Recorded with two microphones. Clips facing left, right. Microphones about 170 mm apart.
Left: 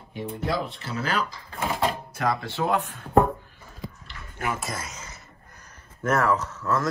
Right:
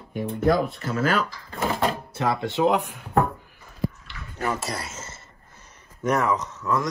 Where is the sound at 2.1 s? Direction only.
20° right (ahead or behind).